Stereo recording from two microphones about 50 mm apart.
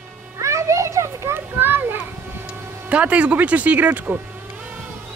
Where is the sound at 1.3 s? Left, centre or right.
Right.